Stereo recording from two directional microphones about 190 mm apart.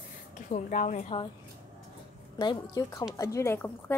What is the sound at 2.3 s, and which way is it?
A woman's voice, 20° left (ahead or behind).